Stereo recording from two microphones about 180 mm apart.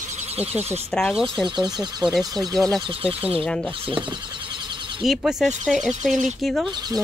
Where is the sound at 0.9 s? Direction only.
5° left (ahead or behind).